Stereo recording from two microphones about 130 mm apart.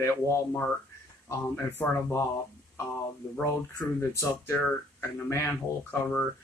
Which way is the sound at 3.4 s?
20° left (ahead or behind).